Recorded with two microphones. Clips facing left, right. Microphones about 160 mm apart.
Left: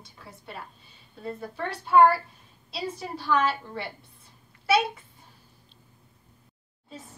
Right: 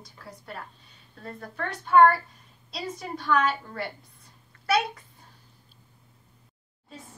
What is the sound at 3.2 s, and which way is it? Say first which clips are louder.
Speech: even; 30° left (ahead or behind).